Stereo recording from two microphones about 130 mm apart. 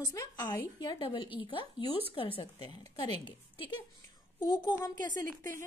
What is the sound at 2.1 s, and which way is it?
A woman's voice, 45° left (ahead or behind).